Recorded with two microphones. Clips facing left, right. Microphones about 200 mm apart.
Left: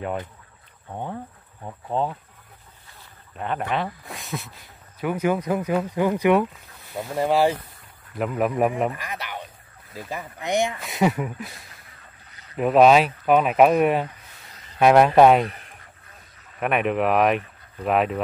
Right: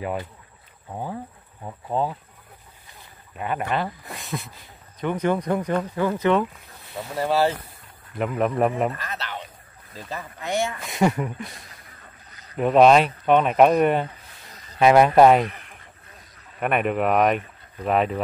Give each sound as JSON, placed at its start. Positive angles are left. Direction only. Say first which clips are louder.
{"t": 0.8, "sound": "speech", "louder": "even", "side_deg": -5}
{"t": 3.3, "sound": "speech", "louder": "even", "side_deg": -5}
{"t": 8.2, "sound": "speech", "louder": "even", "side_deg": 5}
{"t": 10.8, "sound": "speech", "louder": "even", "side_deg": 0}
{"t": 12.5, "sound": "speech", "louder": "even", "side_deg": 5}
{"t": 15.4, "sound": "a sound", "louder": "even", "side_deg": 35}
{"t": 16.5, "sound": "speech", "louder": "even", "side_deg": 0}